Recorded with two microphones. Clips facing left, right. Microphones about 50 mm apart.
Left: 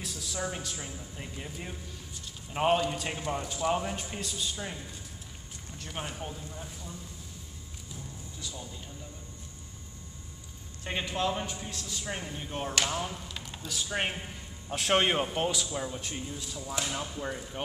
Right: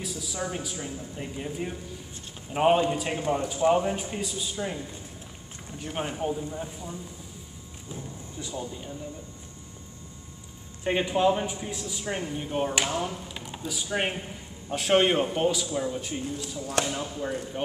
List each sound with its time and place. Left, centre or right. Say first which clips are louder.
0.0 s a woman's voice: right 3 dB; centre
5.7 s speech: right 7 dB; centre
10.8 s a man's voice: right 8 dB; centre
16.8 s speech: right 8 dB; right
17.2 s a woman's voice: right 5 dB; centre